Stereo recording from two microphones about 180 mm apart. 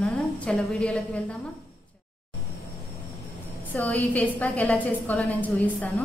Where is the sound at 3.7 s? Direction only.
10° left (ahead or behind).